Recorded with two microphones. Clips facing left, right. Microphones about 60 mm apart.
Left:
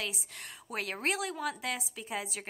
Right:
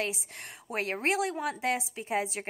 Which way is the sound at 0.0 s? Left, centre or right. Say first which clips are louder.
Right 5 dB; right.